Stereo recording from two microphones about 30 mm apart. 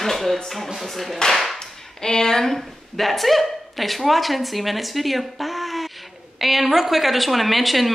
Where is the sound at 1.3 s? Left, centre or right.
Centre.